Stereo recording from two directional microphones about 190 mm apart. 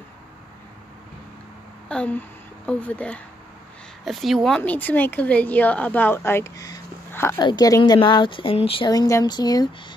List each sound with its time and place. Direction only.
1.9 s a woman's voice: 5° left (ahead or behind)